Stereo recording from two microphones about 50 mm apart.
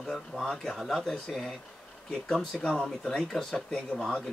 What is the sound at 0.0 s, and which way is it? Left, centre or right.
Speech, centre.